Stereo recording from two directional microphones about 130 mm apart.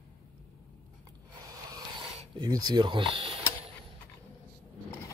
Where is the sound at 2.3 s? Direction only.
30° right (ahead or behind).